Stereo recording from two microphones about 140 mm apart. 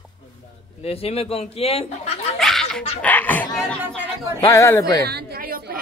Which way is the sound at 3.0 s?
15° left (ahead or behind).